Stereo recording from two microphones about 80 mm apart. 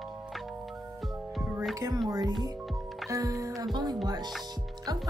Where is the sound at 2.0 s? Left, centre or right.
Right.